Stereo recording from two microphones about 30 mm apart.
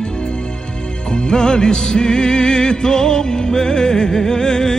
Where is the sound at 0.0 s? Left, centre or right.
Left.